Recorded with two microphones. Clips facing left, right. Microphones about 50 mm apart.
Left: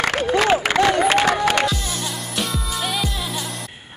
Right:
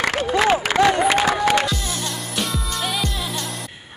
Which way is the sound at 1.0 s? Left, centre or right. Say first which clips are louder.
Left 1 dB; left.